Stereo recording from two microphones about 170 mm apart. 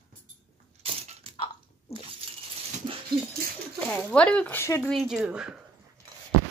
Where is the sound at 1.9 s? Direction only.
35° left (ahead or behind).